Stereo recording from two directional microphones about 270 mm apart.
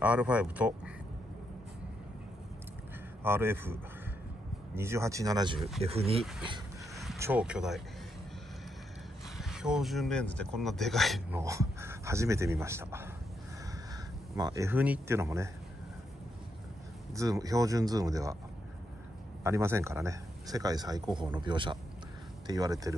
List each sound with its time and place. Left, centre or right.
0.0 s speech: centre
3.3 s speech: centre
4.7 s speech: centre
7.0 s speech: centre
9.4 s speech: centre
14.3 s speech: centre
17.1 s speech: centre
19.4 s speech: centre